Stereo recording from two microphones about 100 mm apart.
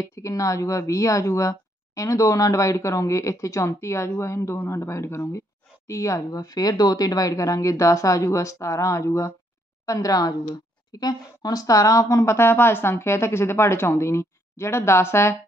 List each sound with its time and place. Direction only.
0.0 s speech: 35° left (ahead or behind)